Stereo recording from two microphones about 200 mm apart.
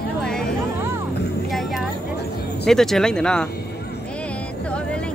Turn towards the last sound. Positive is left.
turn(degrees=5)  # may be behind; listen again after turning